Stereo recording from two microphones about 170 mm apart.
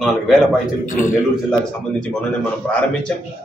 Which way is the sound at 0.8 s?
50° left (ahead or behind).